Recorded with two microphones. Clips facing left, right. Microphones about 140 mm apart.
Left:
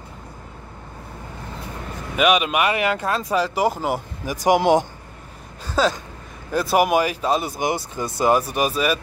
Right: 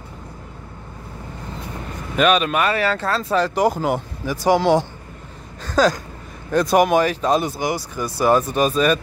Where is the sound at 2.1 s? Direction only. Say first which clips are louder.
Right 1 dB; 10° left (ahead or behind).